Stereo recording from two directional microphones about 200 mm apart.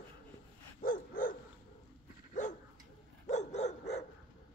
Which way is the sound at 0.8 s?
45° left (ahead or behind).